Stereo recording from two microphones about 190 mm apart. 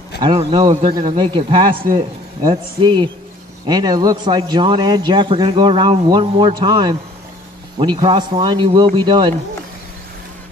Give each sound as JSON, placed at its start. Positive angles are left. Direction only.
{"t": 0.2, "sound": "a man's voice", "side_deg": -20}